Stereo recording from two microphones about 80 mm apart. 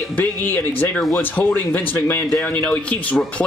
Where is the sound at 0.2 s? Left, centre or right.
Left.